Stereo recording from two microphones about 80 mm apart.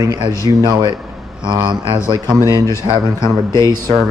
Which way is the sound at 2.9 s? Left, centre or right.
Right.